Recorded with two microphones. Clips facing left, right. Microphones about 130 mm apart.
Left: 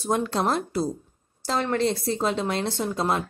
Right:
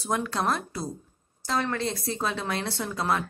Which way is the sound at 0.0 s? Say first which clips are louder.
Left 3 dB; 25° left (ahead or behind).